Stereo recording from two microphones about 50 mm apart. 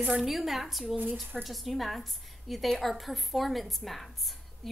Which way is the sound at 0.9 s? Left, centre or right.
Right.